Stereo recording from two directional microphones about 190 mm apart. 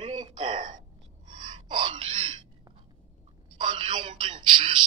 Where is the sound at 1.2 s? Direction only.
25° right (ahead or behind).